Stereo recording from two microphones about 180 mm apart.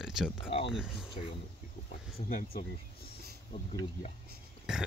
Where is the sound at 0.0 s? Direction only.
5° right (ahead or behind).